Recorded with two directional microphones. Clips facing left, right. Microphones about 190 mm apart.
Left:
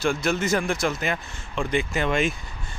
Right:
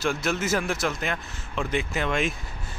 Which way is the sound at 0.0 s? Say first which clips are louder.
Left 3 dB; centre (ahead or behind).